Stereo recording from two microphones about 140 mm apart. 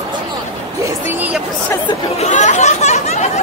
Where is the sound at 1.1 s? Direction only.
10° right (ahead or behind).